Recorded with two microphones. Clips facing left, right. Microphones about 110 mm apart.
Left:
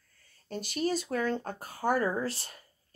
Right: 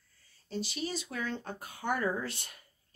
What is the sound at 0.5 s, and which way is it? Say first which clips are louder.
Speech: left 5 dB; 50° left (ahead or behind).